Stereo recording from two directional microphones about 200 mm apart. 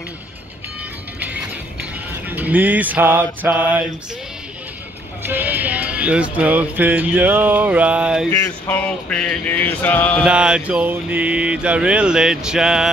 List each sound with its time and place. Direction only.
1.2 s music: 10° right (ahead or behind)
5.2 s speech: 10° right (ahead or behind)
8.3 s male singing: 10° left (ahead or behind)
10.2 s speech: 5° right (ahead or behind)